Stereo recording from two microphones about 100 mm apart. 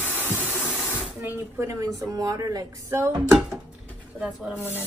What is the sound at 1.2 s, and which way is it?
Speech, 30° right (ahead or behind).